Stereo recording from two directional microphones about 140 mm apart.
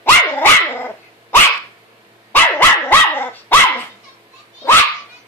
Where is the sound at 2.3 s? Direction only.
15° left (ahead or behind).